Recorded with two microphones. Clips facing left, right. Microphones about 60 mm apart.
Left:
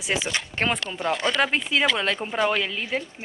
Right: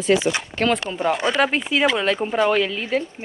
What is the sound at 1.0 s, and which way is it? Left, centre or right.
Speech, centre.